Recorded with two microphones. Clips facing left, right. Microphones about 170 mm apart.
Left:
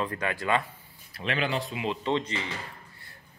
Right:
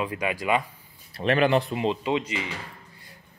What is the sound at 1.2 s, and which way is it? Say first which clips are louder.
Speech: right 8 dB; 55° right (ahead or behind).